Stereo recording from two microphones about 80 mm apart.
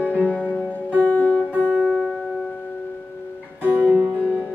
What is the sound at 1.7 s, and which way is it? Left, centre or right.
Music, centre.